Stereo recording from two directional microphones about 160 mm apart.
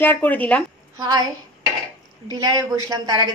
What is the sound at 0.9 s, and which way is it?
Speech, 20° right (ahead or behind).